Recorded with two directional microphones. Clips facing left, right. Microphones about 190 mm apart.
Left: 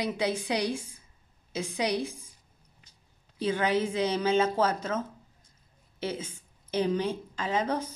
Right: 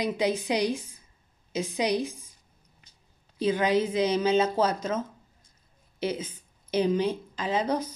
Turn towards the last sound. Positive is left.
turn(degrees=-15)  # may be behind; listen again after turning